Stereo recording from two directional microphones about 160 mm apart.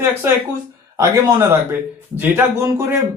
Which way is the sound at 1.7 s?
15° right (ahead or behind).